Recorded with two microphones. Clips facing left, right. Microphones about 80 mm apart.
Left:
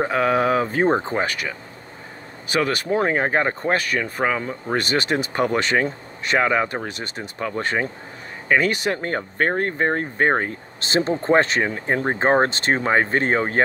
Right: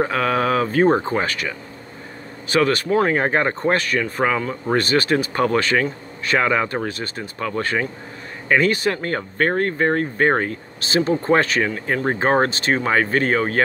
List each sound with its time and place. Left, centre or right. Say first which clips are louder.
0.0 s speech: even; centre
2.5 s speech: right 3 dB; centre
8.5 s speech: right 2 dB; centre
10.8 s speech: right 2 dB; left